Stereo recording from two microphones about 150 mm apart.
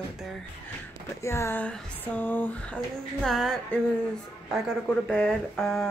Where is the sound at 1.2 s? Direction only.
20° left (ahead or behind); by 3.8 s centre (ahead or behind).